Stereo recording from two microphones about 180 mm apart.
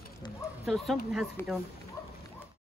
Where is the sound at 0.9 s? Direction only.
Centre (ahead or behind).